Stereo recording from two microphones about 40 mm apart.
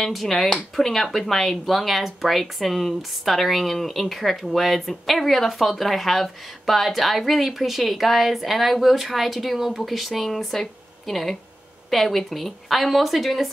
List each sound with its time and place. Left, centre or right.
0.0 s speech: centre